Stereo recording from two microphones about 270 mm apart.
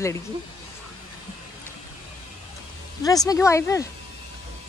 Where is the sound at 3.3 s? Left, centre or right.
Centre.